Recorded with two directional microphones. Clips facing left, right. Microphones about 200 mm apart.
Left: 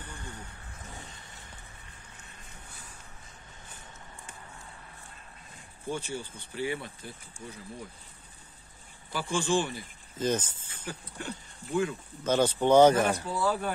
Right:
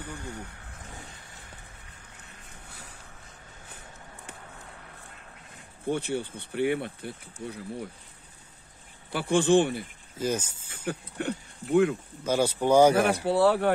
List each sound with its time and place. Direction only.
5.9 s speech: 60° right (ahead or behind)
9.1 s speech: 60° right (ahead or behind)
10.1 s speech: 10° right (ahead or behind)
10.9 s speech: 60° right (ahead or behind)
12.2 s speech: 10° right (ahead or behind)
13.1 s speech: 65° right (ahead or behind)